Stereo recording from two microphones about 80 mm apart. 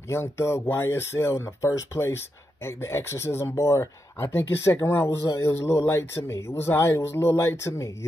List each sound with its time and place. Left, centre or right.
0.1 s speech: left